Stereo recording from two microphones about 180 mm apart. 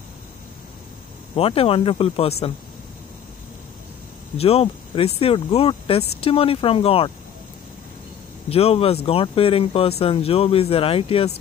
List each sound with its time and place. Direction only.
1.3 s speech: 30° left (ahead or behind)
4.4 s speech: 35° left (ahead or behind)
8.5 s speech: 35° left (ahead or behind)